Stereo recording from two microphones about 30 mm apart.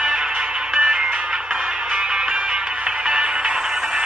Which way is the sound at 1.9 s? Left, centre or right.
Right.